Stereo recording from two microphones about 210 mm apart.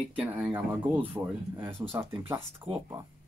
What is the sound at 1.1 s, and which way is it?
Speech, 10° right (ahead or behind).